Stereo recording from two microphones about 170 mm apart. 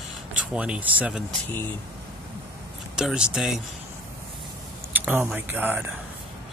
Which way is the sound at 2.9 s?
5° right (ahead or behind).